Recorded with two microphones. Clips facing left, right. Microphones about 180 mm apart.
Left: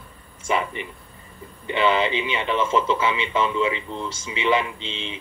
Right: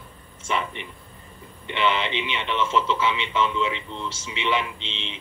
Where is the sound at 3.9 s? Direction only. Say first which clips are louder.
Left 3 dB; 40° left (ahead or behind).